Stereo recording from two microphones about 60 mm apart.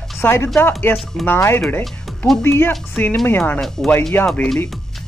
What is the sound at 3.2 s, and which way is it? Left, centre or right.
Speech, left.